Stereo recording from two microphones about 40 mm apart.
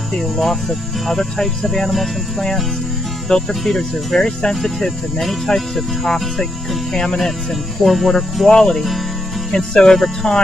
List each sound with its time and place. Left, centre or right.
0.4 s speech: centre
3.3 s speech: centre
4.6 s music: centre
5.8 s speech: centre
7.8 s music: centre
8.5 s speech: centre
8.7 s music: centre
9.5 s speech: centre